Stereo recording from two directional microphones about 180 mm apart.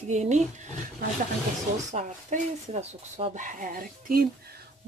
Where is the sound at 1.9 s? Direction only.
40° right (ahead or behind).